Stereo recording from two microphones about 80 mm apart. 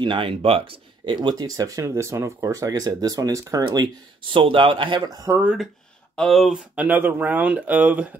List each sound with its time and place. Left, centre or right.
0.0 s speech: right
1.0 s speech: right
3.7 s speech: right
5.0 s speech: right
6.1 s speech: centre
6.7 s speech: centre